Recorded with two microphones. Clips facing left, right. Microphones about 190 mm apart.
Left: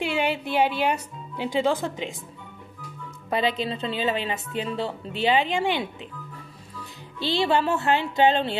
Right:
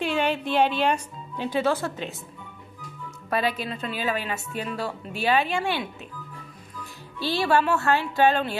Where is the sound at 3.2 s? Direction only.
20° left (ahead or behind).